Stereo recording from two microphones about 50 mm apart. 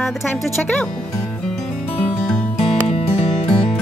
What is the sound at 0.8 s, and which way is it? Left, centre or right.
Music, centre.